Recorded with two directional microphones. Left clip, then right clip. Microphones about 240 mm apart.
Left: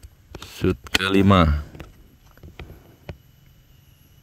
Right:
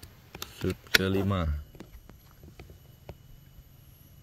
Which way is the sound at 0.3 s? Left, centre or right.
Left.